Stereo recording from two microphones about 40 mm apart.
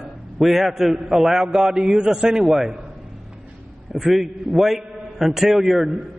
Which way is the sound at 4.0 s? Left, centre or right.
Centre.